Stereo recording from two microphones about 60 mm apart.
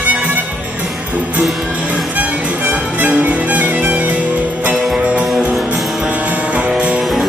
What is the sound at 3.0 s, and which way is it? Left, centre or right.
Music, right.